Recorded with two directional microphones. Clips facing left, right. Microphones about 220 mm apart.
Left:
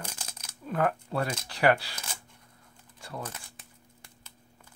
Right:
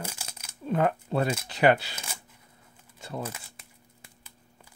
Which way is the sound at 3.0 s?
20° right (ahead or behind).